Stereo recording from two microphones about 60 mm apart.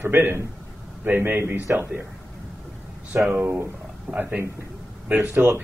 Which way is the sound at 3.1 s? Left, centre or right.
Right.